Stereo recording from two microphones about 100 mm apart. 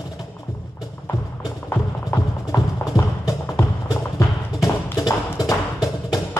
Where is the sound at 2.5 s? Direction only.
35° left (ahead or behind).